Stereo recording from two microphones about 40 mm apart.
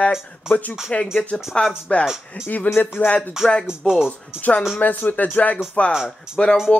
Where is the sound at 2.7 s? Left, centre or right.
Left.